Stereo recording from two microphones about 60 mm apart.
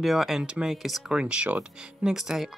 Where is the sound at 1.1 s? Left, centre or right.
Centre.